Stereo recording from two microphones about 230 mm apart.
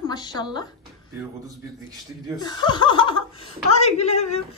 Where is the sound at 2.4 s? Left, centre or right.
Centre.